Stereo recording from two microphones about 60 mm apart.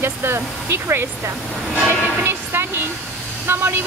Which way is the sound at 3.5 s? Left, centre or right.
Right.